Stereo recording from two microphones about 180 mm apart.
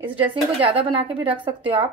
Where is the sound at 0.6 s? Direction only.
30° right (ahead or behind).